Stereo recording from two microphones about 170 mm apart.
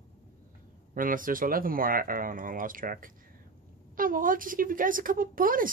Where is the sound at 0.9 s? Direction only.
55° right (ahead or behind).